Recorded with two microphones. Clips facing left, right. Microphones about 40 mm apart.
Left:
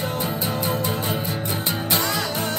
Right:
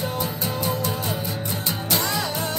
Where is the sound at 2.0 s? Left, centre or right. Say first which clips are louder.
Left 1 dB; centre.